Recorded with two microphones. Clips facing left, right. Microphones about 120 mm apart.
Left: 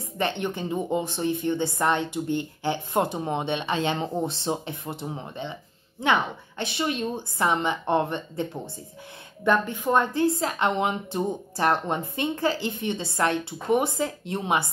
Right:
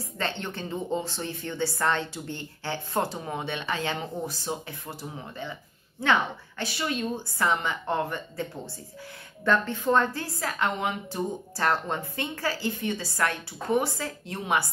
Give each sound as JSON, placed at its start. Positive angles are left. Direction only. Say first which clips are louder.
{"t": 0.2, "sound": "a woman's voice", "louder": "left 5 dB", "side_deg": 15}